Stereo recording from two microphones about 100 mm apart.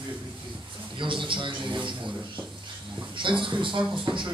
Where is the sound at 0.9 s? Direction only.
55° right (ahead or behind).